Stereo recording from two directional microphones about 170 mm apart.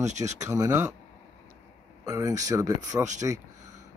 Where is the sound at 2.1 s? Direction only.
20° right (ahead or behind).